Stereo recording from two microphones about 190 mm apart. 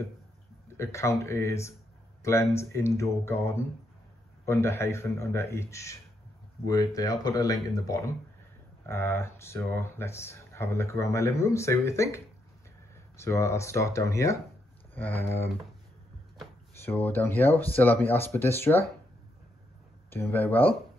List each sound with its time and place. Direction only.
0.7 s speech: 15° left (ahead or behind)
13.2 s speech: 15° left (ahead or behind)
16.7 s speech: 10° left (ahead or behind)
20.1 s speech: 10° left (ahead or behind)